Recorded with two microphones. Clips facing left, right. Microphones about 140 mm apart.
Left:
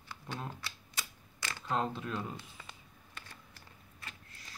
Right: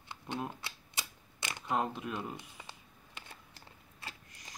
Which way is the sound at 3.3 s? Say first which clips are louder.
Right 1 dB; 30° right (ahead or behind).